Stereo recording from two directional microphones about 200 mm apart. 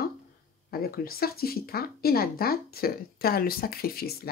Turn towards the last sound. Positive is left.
turn(degrees=50)  # may be behind; listen again after turning